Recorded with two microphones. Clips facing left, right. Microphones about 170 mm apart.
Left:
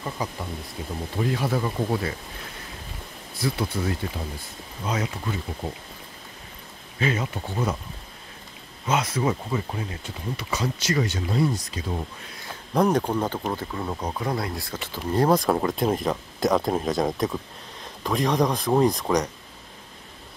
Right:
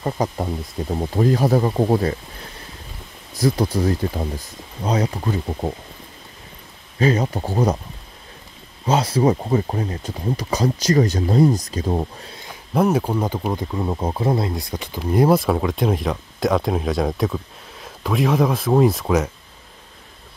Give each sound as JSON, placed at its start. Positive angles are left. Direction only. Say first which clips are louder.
{"t": 0.0, "sound": "speech", "louder": "right 8 dB", "side_deg": -45}
{"t": 3.3, "sound": "speech", "louder": "right 8 dB", "side_deg": -40}
{"t": 7.0, "sound": "speech", "louder": "right 7 dB", "side_deg": -40}
{"t": 8.8, "sound": "speech", "louder": "right 6 dB", "side_deg": -30}
{"t": 12.7, "sound": "speech", "louder": "right 3 dB", "side_deg": -5}